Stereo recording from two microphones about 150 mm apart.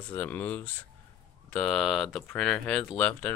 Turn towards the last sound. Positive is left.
turn(degrees=10)  # may be behind; listen again after turning